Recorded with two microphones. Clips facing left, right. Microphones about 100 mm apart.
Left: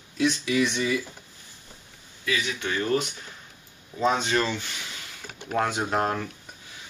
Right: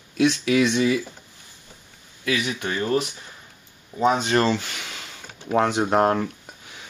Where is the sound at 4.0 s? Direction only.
15° right (ahead or behind).